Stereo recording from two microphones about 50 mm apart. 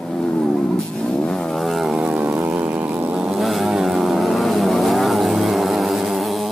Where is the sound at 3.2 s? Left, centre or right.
Centre.